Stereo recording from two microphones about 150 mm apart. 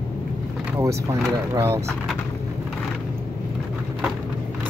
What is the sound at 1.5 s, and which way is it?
Speech, 15° right (ahead or behind).